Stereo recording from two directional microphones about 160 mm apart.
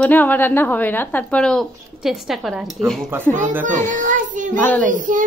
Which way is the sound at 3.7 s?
50° right (ahead or behind).